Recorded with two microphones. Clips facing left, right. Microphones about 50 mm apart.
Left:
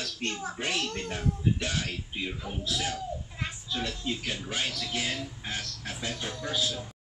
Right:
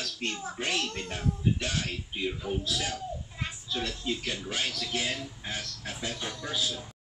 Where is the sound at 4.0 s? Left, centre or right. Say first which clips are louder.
Even; centre.